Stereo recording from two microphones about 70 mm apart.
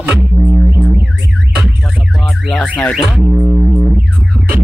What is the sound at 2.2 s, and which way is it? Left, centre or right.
Car alarm, centre.